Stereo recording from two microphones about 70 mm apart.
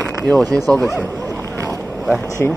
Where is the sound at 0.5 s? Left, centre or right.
Right.